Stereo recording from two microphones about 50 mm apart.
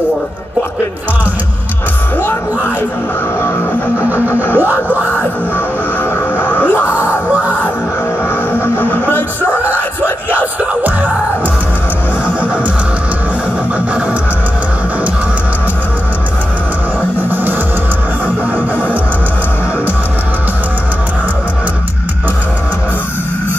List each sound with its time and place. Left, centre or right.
4.1 s music: right
6.3 s music: left
8.5 s music: left
10.6 s music: right
17.3 s music: right